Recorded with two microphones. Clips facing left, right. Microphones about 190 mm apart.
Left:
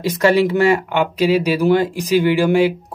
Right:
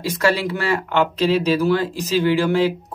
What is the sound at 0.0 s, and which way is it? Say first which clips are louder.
Speech: left 5 dB; 20° left (ahead or behind).